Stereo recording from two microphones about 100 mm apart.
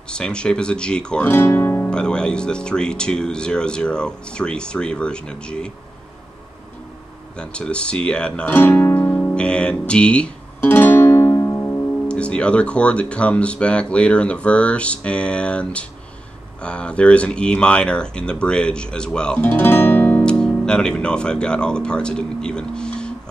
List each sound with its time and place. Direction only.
0.1 s speech: 10° left (ahead or behind)
1.3 s speech: 25° left (ahead or behind)
1.9 s speech: 10° left (ahead or behind)
7.3 s speech: 10° left (ahead or behind)
8.5 s speech: 20° left (ahead or behind)
10.6 s music: 20° left (ahead or behind)
12.1 s speech: 10° left (ahead or behind)
19.5 s speech: 20° left (ahead or behind)